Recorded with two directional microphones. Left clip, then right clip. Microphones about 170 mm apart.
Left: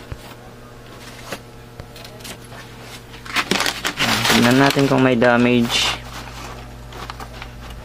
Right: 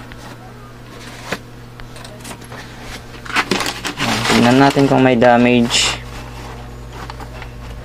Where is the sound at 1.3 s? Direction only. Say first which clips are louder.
Right 7 dB; 45° right (ahead or behind).